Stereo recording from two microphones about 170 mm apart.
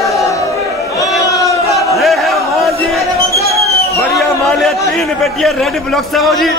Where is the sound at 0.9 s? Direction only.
20° left (ahead or behind).